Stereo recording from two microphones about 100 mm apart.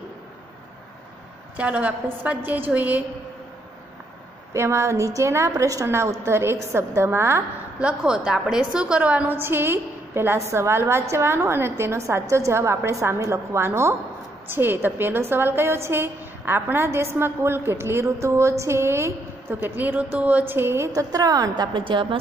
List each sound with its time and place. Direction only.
1.6 s a woman's voice: 15° right (ahead or behind)
4.6 s a woman's voice: 25° right (ahead or behind)
7.8 s a woman's voice: 10° right (ahead or behind); by 22.0 s 55° right (ahead or behind)